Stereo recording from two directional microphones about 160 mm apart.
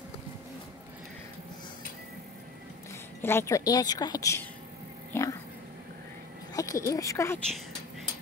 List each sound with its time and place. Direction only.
3.2 s a woman's voice: 15° left (ahead or behind)
5.1 s dog: 15° left (ahead or behind)
6.5 s speech: 20° left (ahead or behind)